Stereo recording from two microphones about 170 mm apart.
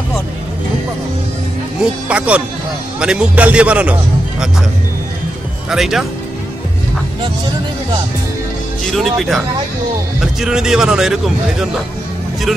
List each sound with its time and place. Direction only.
1.8 s a man's voice: 5° right (ahead or behind)
5.7 s speech: centre (ahead or behind)
8.9 s speech: centre (ahead or behind)